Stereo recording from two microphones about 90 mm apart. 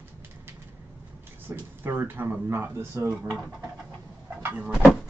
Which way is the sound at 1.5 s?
35° right (ahead or behind).